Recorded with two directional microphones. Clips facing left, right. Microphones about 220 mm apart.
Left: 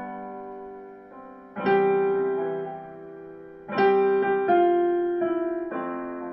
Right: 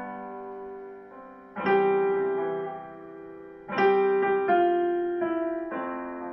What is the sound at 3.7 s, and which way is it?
Music, 40° left (ahead or behind).